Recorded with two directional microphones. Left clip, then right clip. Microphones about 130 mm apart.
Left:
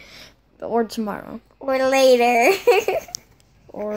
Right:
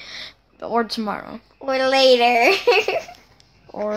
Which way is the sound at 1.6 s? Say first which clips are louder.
Even; 70° left (ahead or behind).